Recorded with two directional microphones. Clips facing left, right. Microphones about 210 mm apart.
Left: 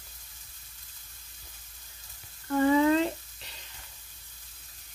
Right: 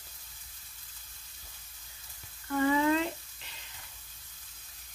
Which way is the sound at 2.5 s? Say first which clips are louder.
Left 4 dB; 35° left (ahead or behind).